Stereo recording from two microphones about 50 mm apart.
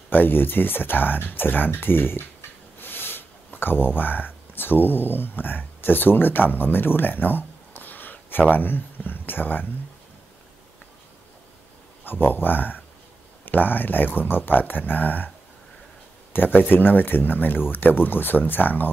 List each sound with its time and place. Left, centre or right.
0.1 s speech: left
12.0 s speech: left
16.3 s speech: left